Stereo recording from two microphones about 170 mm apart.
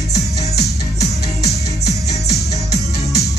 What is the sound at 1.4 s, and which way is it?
Music, 70° left (ahead or behind).